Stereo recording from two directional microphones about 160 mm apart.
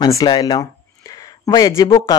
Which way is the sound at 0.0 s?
25° left (ahead or behind).